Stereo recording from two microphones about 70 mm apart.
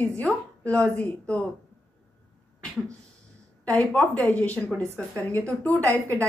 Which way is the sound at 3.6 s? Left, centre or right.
Centre.